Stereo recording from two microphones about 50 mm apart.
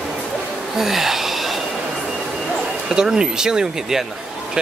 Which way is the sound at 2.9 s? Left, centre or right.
Centre.